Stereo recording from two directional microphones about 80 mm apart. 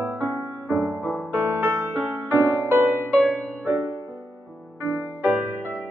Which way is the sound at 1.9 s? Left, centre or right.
Centre.